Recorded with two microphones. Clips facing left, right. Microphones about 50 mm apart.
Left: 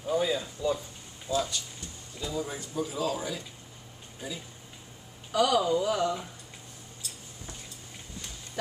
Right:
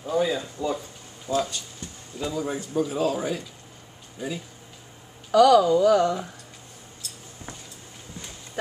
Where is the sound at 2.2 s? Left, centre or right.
Right.